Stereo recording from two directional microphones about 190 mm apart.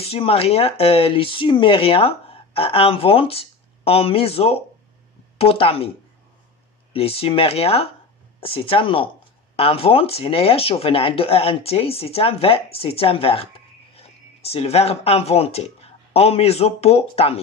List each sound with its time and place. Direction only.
0.0 s speech: 30° left (ahead or behind)
6.9 s speech: 30° left (ahead or behind)